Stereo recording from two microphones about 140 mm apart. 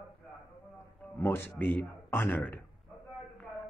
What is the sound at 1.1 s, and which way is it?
Speech, 15° left (ahead or behind).